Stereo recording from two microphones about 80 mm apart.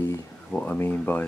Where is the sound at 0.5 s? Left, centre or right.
Centre.